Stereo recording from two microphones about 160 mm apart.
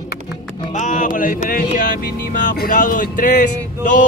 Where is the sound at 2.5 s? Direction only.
65° left (ahead or behind).